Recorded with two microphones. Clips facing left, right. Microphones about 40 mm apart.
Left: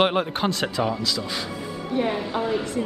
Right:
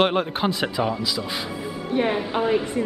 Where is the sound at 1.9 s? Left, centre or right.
Right.